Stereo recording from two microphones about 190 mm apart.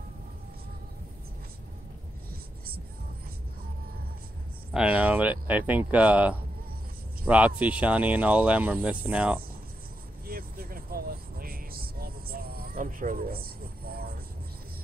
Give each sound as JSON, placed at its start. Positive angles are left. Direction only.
{"t": 4.7, "sound": "speech", "side_deg": -5}
{"t": 10.2, "sound": "vehicle", "side_deg": -50}